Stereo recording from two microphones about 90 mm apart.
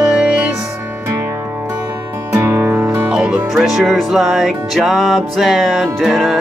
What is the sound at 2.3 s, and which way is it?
Music, 30° right (ahead or behind).